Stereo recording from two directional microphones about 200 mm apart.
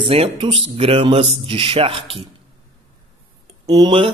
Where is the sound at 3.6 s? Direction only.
20° right (ahead or behind).